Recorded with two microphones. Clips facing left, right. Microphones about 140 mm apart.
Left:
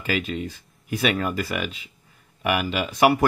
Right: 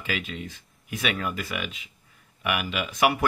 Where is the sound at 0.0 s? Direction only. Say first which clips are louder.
Left 6 dB; 40° left (ahead or behind).